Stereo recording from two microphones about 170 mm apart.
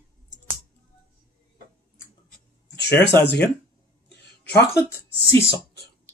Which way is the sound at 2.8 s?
85° left.